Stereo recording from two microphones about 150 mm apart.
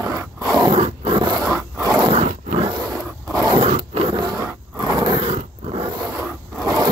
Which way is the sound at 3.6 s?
45° right (ahead or behind).